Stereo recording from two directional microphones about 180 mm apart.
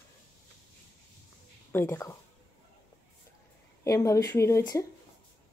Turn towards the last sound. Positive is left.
turn(degrees=20)  # may be behind; listen again after turning